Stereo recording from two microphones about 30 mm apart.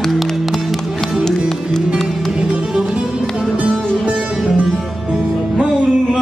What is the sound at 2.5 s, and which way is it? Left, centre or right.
Music, right.